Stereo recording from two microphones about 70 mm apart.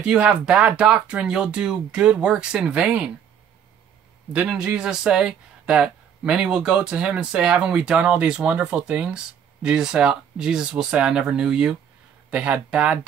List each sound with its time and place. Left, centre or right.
0.0 s speech: centre
4.5 s speech: centre